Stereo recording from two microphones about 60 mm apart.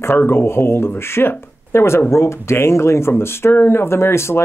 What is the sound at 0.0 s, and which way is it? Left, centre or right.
Speech, left.